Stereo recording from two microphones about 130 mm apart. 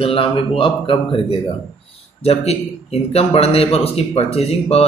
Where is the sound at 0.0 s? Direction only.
45° left (ahead or behind).